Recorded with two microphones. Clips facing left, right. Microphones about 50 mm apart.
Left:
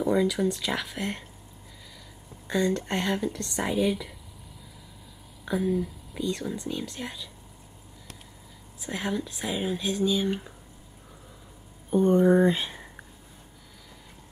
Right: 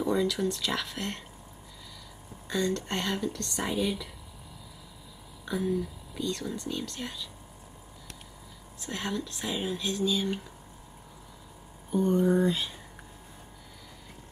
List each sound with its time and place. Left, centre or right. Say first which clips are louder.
0.0 s speech: left 3 dB; centre
2.4 s speech: left 3 dB; centre
5.4 s speech: left 3 dB; centre
8.7 s speech: left 3 dB; centre
11.9 s speech: left 5 dB; left